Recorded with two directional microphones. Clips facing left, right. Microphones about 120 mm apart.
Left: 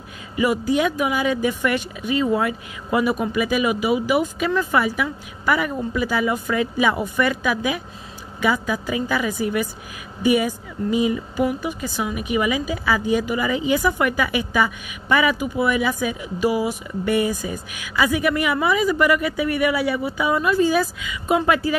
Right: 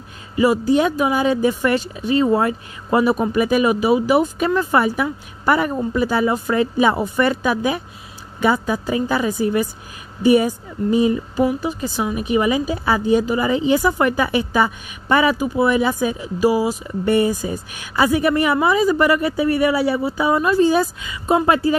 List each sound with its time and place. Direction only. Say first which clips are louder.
0.4 s a woman's voice: right 4 dB; 35° right (ahead or behind)